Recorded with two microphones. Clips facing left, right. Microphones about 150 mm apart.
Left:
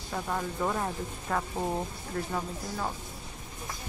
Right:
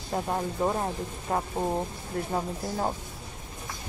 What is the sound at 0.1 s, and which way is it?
Speech, 30° right (ahead or behind).